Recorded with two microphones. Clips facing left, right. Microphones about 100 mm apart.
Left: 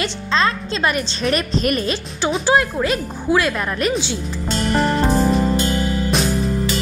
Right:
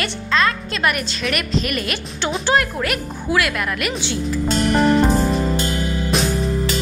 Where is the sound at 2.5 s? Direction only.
20° left (ahead or behind).